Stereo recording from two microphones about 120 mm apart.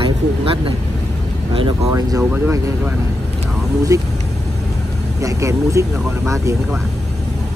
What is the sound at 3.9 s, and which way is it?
Speech, 30° right (ahead or behind).